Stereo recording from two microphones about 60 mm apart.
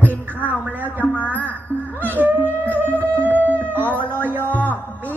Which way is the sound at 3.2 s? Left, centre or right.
Right.